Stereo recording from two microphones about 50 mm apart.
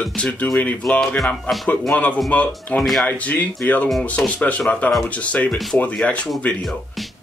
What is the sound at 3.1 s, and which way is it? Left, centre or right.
Speech, left.